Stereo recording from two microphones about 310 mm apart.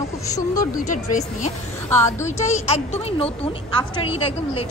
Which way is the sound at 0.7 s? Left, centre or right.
Left.